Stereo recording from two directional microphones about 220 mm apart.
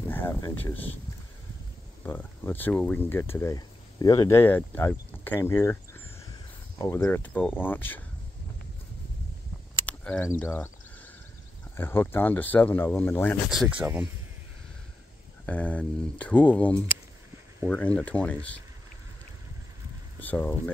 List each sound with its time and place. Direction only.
0.0 s speech: 10° left (ahead or behind)
2.0 s speech: 10° left (ahead or behind)
6.8 s speech: 10° left (ahead or behind)
9.8 s a sound: 5° left (ahead or behind)
10.4 s speech: 10° left (ahead or behind)
11.7 s speech: 10° left (ahead or behind)
13.5 s speech: 5° right (ahead or behind)
15.4 s speech: 5° left (ahead or behind)
20.2 s speech: 5° left (ahead or behind)